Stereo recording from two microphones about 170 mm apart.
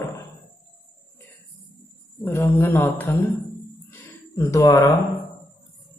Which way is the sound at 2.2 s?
15° left (ahead or behind).